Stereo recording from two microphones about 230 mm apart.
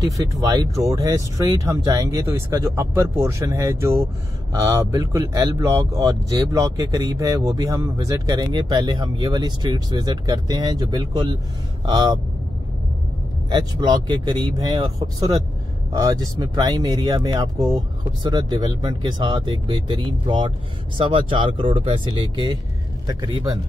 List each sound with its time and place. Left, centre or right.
0.4 s speech: centre
13.5 s speech: centre